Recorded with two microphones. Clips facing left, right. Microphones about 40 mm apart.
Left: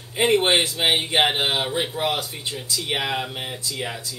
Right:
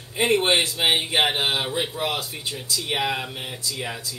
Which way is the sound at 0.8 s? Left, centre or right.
Centre.